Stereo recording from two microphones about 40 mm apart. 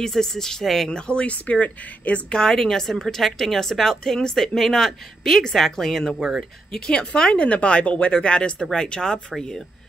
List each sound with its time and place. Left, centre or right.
0.0 s a woman's voice: centre
0.8 s a woman's voice: left
1.2 s speech: left
2.2 s a woman's voice: centre